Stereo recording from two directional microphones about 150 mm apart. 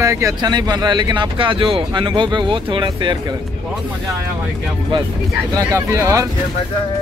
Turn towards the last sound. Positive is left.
turn(degrees=-20)  # may be behind; listen again after turning